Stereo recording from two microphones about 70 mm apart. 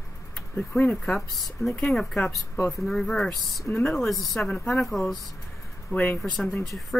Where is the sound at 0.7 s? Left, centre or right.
Left.